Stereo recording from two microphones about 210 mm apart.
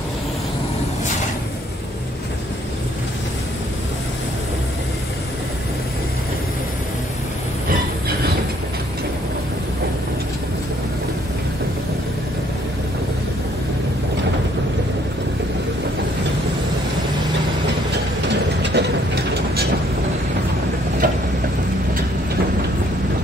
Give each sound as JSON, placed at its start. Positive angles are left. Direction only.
{"t": 18.6, "sound": "mechanisms", "side_deg": -55}
{"t": 21.0, "sound": "vehicle", "side_deg": -40}